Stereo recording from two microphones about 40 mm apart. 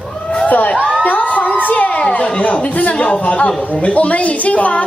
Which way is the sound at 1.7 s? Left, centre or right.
Left.